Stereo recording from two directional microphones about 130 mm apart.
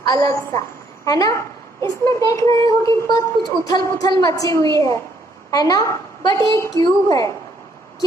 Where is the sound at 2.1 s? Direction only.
25° left (ahead or behind).